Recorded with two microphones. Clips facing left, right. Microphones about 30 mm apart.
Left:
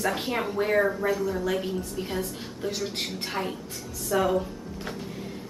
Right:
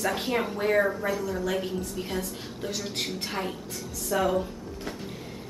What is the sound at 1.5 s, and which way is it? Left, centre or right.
A woman's voice, centre.